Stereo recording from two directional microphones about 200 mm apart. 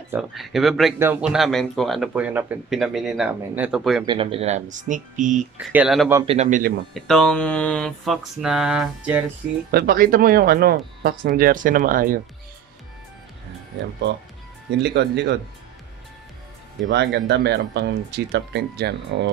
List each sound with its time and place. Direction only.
0.1 s a man's voice: centre (ahead or behind)
0.9 s a man's voice: 10° right (ahead or behind)
4.0 s speech: 25° right (ahead or behind)
5.7 s speech: 5° right (ahead or behind)
6.2 s speech: 35° right (ahead or behind)
6.9 s a man's voice: centre (ahead or behind)
9.7 s speech: 50° right (ahead or behind)
14.7 s speech: 60° right (ahead or behind)
16.9 s speech: 60° right (ahead or behind)